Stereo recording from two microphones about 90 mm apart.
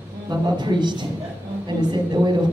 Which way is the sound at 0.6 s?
55° right (ahead or behind).